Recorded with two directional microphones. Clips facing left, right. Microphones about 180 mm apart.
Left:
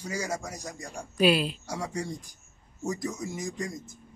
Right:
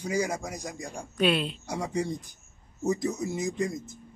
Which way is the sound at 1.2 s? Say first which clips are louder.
Left 2 dB; 5° left (ahead or behind).